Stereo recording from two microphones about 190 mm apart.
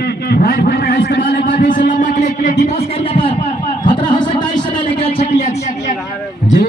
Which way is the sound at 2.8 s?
30° left (ahead or behind).